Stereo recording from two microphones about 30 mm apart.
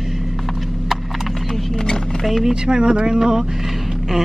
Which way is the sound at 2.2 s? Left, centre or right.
Centre.